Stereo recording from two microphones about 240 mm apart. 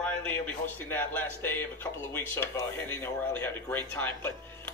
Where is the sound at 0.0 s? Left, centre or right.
Centre.